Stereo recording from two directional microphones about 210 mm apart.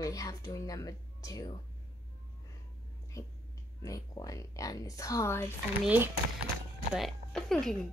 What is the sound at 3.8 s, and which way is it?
Speech, 15° left (ahead or behind).